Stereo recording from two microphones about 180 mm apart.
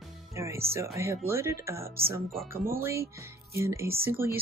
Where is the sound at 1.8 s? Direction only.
55° right (ahead or behind).